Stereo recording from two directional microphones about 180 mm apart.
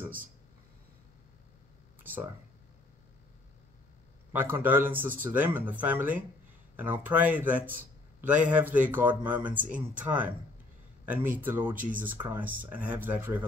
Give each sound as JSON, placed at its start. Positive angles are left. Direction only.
{"t": 2.1, "sound": "a sound", "side_deg": -10}
{"t": 4.3, "sound": "a man's voice", "side_deg": -10}
{"t": 9.5, "sound": "speech", "side_deg": -45}
{"t": 9.8, "sound": "a man's voice", "side_deg": -10}